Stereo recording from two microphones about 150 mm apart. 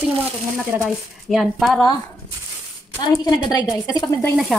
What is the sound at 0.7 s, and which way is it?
Speech, 15° right (ahead or behind).